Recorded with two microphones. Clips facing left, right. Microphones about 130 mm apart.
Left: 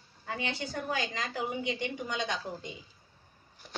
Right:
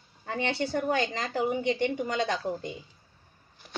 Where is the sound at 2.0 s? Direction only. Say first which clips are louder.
Right 6 dB; 40° right (ahead or behind).